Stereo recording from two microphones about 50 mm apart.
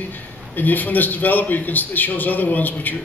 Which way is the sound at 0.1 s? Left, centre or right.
Left.